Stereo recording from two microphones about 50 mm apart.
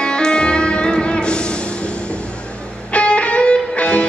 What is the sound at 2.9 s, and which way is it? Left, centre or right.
Music, left.